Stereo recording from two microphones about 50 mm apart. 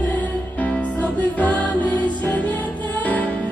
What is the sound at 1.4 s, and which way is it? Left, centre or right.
Music, left.